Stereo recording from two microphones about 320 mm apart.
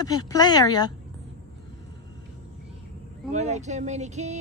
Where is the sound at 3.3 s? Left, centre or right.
Right.